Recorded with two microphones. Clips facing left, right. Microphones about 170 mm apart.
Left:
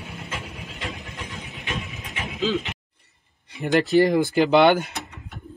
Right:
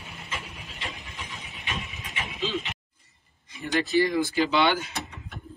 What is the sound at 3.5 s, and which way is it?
Speech, 65° left (ahead or behind).